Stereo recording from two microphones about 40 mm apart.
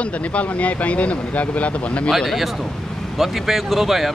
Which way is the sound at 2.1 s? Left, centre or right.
Centre.